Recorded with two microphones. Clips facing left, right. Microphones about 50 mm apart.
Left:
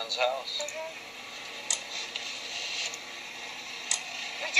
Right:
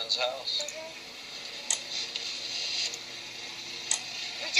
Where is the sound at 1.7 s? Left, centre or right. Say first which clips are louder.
Even; centre.